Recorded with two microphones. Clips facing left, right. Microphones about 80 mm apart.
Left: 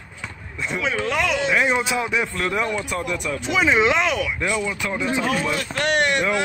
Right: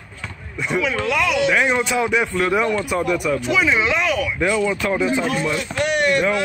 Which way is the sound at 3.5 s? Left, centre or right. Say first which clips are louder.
Left 4 dB; left.